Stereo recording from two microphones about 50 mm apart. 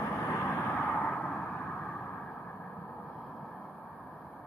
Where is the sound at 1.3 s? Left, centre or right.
Left.